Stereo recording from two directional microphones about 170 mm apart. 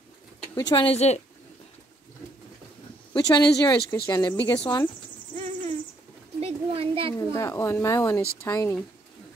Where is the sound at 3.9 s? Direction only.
15° left (ahead or behind).